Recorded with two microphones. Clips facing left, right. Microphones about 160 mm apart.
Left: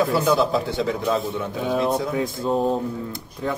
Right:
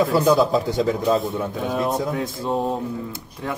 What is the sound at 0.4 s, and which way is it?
Speech, 45° right (ahead or behind).